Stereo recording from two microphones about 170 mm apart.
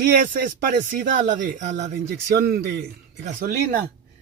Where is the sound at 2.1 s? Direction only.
65° right (ahead or behind).